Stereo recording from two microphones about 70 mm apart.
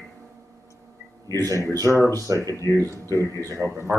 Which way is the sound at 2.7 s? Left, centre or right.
Right.